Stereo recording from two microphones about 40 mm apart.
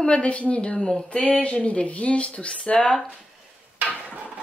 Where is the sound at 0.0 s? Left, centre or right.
Left.